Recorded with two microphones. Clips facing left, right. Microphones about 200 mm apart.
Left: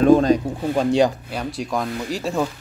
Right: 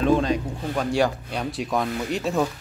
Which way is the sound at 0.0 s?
45° left (ahead or behind).